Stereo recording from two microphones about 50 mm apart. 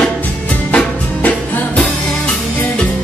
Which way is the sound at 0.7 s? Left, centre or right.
Left.